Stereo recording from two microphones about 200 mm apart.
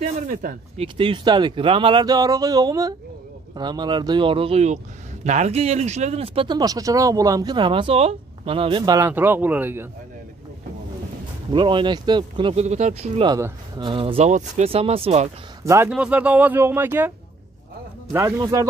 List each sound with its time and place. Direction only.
0.0 s speech: 45° right (ahead or behind)
0.7 s speech: 25° right (ahead or behind); by 9.8 s 10° right (ahead or behind)
11.5 s speech: 25° right (ahead or behind)
13.2 s speech: 20° right (ahead or behind)
15.6 s speech: 15° right (ahead or behind)
18.1 s speech: 15° right (ahead or behind)